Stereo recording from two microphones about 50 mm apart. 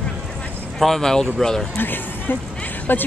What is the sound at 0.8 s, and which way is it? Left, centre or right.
Speech, centre.